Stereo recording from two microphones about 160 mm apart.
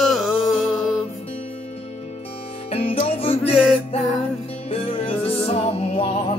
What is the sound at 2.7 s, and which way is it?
Music, 40° left (ahead or behind).